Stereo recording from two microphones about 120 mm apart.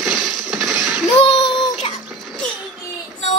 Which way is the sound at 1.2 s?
50° left (ahead or behind).